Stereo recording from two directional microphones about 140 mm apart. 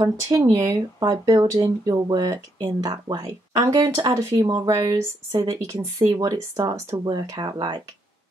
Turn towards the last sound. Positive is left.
turn(degrees=-30)  # may be behind; listen again after turning